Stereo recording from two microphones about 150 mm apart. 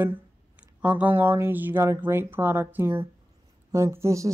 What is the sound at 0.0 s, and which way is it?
Speech, 10° right (ahead or behind).